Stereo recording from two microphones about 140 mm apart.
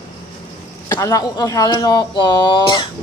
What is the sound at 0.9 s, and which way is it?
Speech, 25° left (ahead or behind).